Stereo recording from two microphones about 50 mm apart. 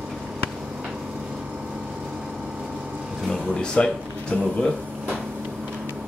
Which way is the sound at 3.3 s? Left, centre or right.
Centre.